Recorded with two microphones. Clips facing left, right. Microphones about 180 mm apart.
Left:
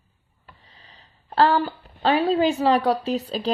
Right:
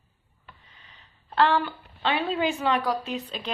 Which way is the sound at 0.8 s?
35° left (ahead or behind).